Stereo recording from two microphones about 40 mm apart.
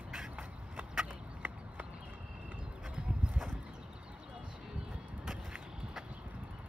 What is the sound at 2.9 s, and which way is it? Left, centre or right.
Clip-clop, right.